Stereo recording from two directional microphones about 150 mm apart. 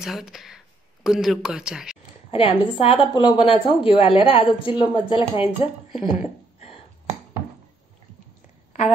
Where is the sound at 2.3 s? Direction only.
40° left (ahead or behind).